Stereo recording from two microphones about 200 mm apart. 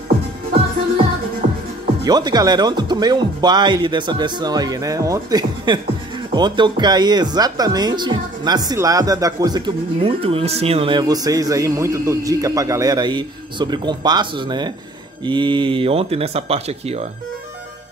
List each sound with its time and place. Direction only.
2.0 s speech: 20° right (ahead or behind)
10.0 s speech: 30° right (ahead or behind)